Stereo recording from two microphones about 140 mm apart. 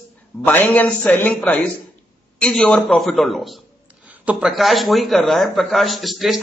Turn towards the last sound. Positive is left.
turn(degrees=0)  # may be behind; listen again after turning